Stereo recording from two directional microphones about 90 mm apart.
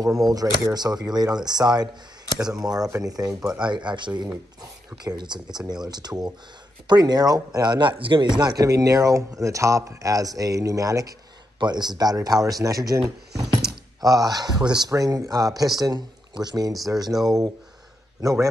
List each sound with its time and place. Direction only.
0.2 s speech: 45° right (ahead or behind)
3.3 s speech: 10° right (ahead or behind)
3.6 s speech: 60° right (ahead or behind); by 11.1 s 40° right (ahead or behind)
11.6 s speech: 50° right (ahead or behind)
14.0 s speech: 45° right (ahead or behind)
14.9 s speech: 40° right (ahead or behind)